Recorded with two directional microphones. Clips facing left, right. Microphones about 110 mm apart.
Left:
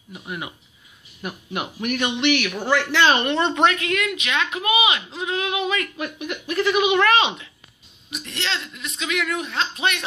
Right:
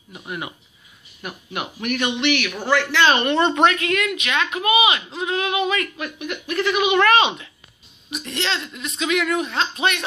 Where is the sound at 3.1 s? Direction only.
Centre (ahead or behind).